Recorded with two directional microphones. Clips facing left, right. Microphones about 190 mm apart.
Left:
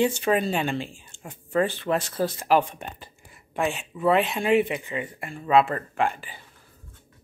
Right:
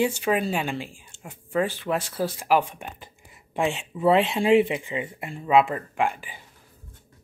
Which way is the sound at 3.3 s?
25° right (ahead or behind).